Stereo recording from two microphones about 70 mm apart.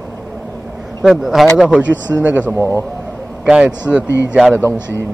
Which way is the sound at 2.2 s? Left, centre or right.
Right.